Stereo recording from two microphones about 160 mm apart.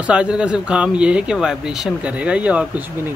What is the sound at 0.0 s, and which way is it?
Speech, 5° right (ahead or behind).